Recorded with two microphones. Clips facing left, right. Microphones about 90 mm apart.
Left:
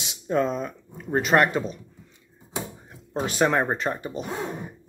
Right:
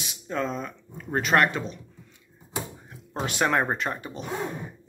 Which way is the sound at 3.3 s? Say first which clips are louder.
Left 2 dB; centre (ahead or behind).